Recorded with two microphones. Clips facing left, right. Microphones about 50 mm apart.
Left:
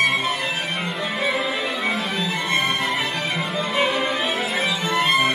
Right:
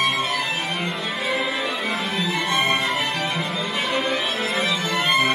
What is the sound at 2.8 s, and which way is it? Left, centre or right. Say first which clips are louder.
Music: even; centre.